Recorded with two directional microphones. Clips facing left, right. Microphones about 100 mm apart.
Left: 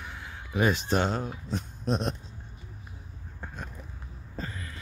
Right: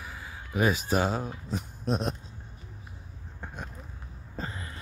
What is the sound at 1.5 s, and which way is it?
Speech, 5° right (ahead or behind).